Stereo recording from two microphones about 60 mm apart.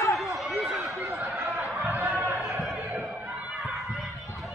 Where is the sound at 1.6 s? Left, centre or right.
Right.